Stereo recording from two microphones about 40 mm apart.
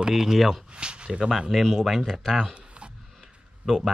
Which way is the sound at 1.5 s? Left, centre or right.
Centre.